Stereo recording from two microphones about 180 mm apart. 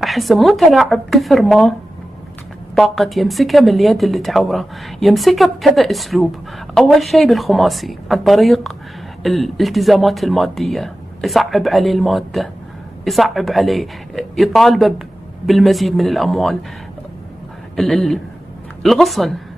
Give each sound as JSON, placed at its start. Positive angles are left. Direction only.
{"t": 0.0, "sound": "a woman's voice", "side_deg": 0}
{"t": 17.7, "sound": "a woman's voice", "side_deg": 0}